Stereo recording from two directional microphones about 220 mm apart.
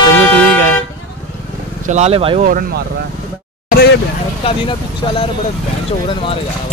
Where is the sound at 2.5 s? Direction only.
40° right (ahead or behind).